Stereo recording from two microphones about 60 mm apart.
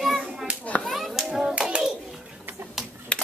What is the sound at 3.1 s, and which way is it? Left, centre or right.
Typing, centre.